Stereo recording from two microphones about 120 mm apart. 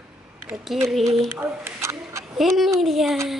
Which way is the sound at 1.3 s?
20° right (ahead or behind).